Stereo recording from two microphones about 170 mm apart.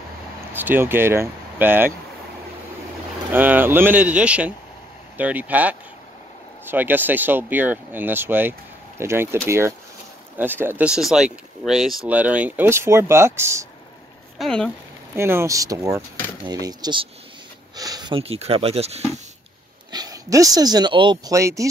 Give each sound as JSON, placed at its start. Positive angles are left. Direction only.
{"t": 0.5, "sound": "speech", "side_deg": -10}
{"t": 3.3, "sound": "speech", "side_deg": -10}
{"t": 14.4, "sound": "speech", "side_deg": 5}
{"t": 15.1, "sound": "speech", "side_deg": -15}
{"t": 19.9, "sound": "speech", "side_deg": -20}